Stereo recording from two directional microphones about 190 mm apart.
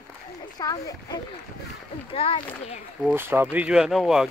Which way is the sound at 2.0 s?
30° left (ahead or behind).